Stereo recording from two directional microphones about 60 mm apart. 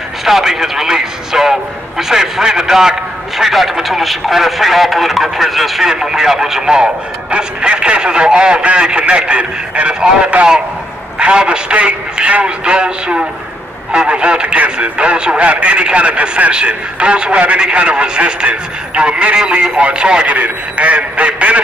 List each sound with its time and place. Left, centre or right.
0.2 s speech: centre; by 21.5 s right